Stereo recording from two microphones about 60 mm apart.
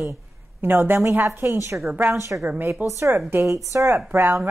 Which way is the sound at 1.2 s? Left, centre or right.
Right.